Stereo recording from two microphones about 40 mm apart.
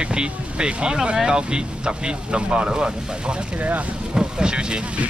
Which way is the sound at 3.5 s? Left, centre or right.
Right.